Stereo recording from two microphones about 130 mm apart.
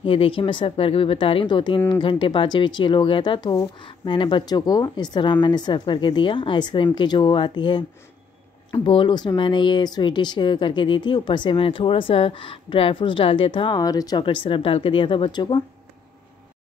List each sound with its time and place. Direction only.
0.0 s speech: 45° left (ahead or behind)